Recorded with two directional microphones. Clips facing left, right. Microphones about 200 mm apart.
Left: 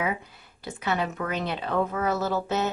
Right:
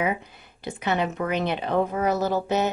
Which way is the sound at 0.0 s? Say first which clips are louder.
Right 3 dB; 20° right (ahead or behind).